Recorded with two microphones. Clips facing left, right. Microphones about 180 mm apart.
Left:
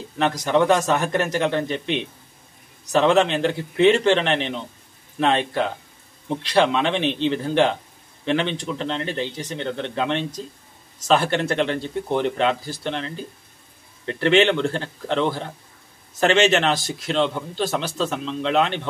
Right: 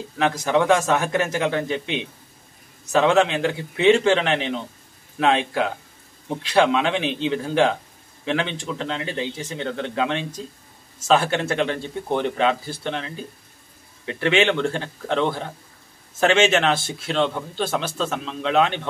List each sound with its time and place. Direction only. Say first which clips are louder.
0.2 s a man's voice: left 1 dB; 5° right (ahead or behind)